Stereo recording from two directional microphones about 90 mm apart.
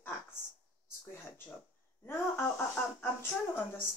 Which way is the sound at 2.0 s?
25° left (ahead or behind).